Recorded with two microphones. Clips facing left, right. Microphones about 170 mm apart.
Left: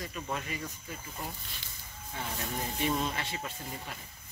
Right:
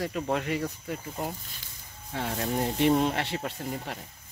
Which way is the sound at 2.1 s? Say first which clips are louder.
Right 8 dB; 70° right (ahead or behind).